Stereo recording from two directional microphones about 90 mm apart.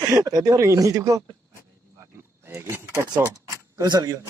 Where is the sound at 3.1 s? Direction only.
45° right (ahead or behind).